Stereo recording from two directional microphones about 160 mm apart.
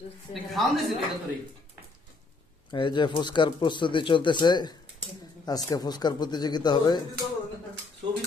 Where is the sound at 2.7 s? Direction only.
30° left (ahead or behind).